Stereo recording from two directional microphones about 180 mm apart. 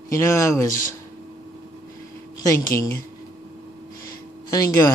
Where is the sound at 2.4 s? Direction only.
15° left (ahead or behind).